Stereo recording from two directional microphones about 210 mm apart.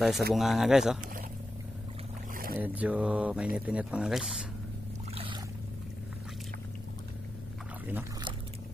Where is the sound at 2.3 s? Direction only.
45° right (ahead or behind).